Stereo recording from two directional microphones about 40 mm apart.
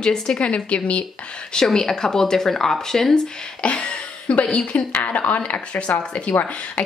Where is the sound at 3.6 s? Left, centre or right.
Left.